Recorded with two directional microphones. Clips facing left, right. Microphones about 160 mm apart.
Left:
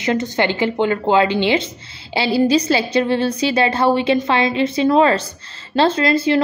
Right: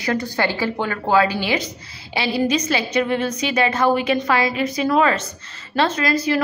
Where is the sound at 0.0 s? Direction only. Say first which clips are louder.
Left 3 dB; 20° left (ahead or behind).